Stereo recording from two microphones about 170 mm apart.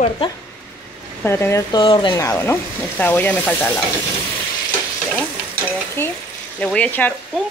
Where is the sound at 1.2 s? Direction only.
15° left (ahead or behind).